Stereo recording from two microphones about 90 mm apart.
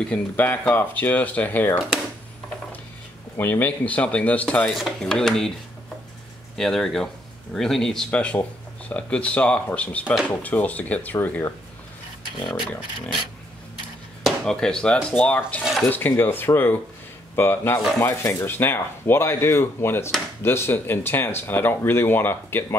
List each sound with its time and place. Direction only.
0.0 s speech: 15° left (ahead or behind)
3.3 s speech: 20° left (ahead or behind)
4.6 s speech: centre (ahead or behind)
6.5 s speech: 5° left (ahead or behind)
12.4 s speech: 65° left (ahead or behind)
14.2 s speech: 5° left (ahead or behind); by 22.8 s 25° left (ahead or behind)